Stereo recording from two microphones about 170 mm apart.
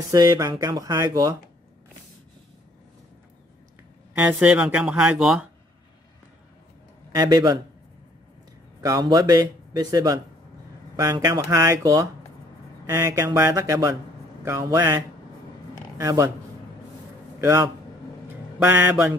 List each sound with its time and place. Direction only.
0.1 s a man's voice: 20° right (ahead or behind)
4.2 s speech: 10° right (ahead or behind)
7.2 s a man's voice: 25° right (ahead or behind)
8.8 s a man's voice: 20° right (ahead or behind)
17.4 s a man's voice: 20° right (ahead or behind)
18.7 s speech: 10° right (ahead or behind)